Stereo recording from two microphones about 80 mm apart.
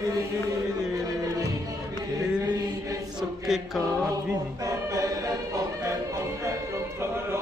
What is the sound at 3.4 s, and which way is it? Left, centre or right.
Music, centre.